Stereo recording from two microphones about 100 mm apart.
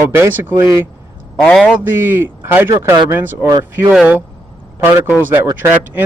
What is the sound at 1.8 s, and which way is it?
Speech, 20° right (ahead or behind).